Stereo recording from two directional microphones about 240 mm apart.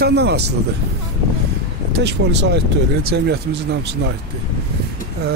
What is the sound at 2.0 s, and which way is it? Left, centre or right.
Speech, right.